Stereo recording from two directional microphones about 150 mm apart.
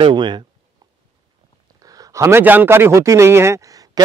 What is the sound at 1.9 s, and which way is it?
A man's voice, 25° right (ahead or behind).